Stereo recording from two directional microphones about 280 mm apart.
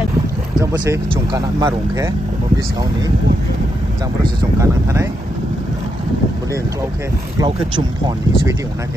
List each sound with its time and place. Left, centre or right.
0.6 s speech: centre
4.2 s speech: centre
7.3 s speech: centre